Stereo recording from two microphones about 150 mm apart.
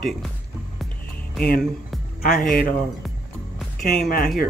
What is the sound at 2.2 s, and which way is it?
Speech, 70° left (ahead or behind).